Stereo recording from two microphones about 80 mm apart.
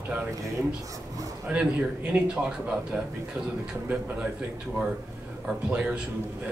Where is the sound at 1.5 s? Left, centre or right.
Centre.